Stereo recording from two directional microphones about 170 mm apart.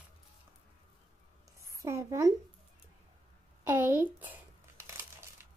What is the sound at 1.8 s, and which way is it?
Speech, 20° right (ahead or behind).